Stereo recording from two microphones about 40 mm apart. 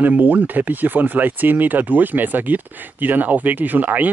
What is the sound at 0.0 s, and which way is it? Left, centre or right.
Speech, right.